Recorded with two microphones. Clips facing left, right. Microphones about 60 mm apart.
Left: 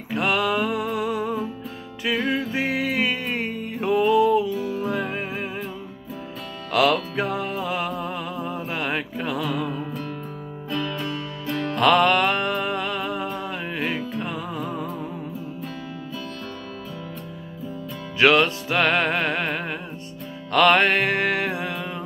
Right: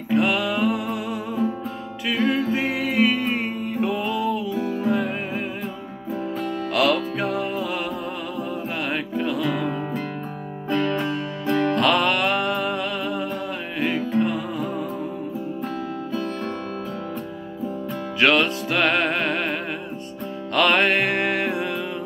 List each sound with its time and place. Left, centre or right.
0.2 s music: centre
4.6 s music: right
6.7 s music: centre
11.7 s music: centre
18.2 s music: centre